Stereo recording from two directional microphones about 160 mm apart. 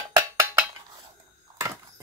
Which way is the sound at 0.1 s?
15° right (ahead or behind).